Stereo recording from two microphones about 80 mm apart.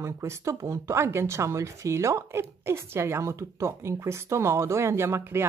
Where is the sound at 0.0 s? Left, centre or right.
Right.